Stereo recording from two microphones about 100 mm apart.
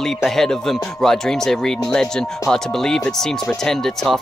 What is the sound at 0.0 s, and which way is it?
Speech, 5° left (ahead or behind).